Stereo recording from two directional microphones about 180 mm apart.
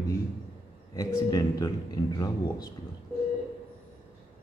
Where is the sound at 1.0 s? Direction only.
20° left (ahead or behind).